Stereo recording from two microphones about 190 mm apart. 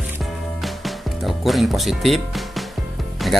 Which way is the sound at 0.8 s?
Centre (ahead or behind).